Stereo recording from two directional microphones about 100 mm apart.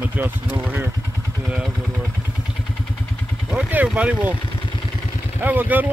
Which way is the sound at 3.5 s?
15° right (ahead or behind).